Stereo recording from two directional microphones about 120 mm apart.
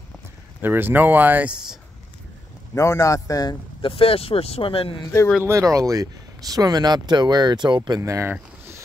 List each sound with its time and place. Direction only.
0.6 s speech: 15° right (ahead or behind)
2.7 s a man's voice: 25° left (ahead or behind)
3.8 s speech: 50° left (ahead or behind)
5.4 s speech: 25° right (ahead or behind)
8.0 s speech: 25° right (ahead or behind)